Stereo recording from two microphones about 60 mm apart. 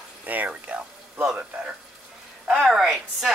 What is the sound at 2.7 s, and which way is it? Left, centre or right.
Speech, centre.